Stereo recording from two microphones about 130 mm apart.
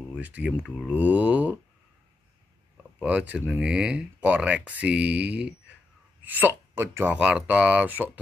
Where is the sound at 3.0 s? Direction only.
10° right (ahead or behind).